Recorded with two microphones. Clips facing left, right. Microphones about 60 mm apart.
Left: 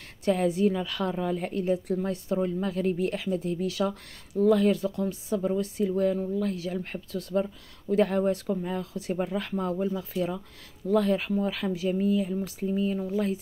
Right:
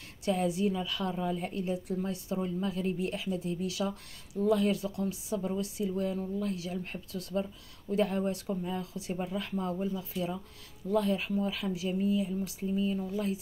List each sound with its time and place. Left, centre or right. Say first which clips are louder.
0.2 s speech: left 5 dB; left
9.1 s speech: left 5 dB; left